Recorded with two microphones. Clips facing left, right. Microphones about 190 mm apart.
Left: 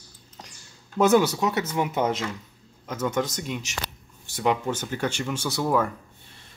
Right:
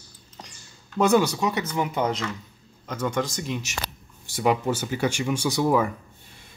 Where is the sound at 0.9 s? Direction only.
5° left (ahead or behind).